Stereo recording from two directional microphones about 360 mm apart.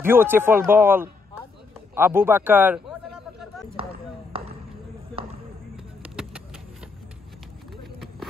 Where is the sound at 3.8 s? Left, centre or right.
Centre.